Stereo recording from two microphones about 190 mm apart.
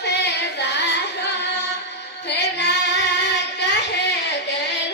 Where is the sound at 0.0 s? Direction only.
60° left (ahead or behind).